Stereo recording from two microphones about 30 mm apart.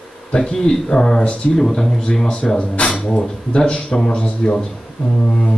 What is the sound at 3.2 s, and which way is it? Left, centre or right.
A man's voice, left.